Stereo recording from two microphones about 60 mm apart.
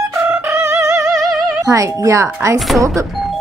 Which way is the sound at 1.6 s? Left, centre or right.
Right.